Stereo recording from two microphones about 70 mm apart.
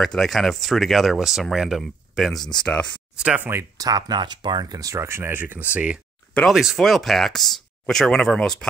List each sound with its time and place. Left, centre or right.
0.0 s speech: centre
2.6 s speech: centre
3.3 s speech: right
3.7 s speech: right
5.0 s speech: right; by 5.9 s centre
6.5 s speech: centre